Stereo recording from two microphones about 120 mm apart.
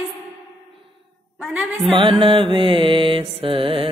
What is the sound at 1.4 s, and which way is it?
Speech, 5° right (ahead or behind).